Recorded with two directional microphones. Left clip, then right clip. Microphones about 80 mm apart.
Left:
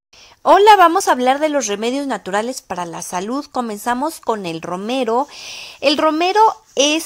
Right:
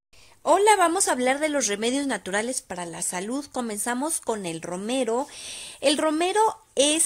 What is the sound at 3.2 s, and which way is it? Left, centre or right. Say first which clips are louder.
A woman's voice: left 8 dB; centre.